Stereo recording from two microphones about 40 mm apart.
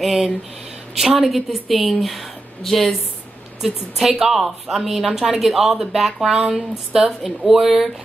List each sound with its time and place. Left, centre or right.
0.0 s a woman's voice: centre
3.6 s a woman's voice: centre
6.2 s a woman's voice: centre